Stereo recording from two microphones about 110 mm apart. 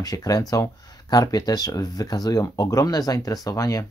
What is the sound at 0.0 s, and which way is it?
Speech, 35° left (ahead or behind).